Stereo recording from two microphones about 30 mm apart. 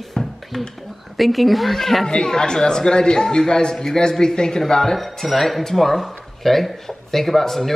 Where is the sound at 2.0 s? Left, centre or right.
Left.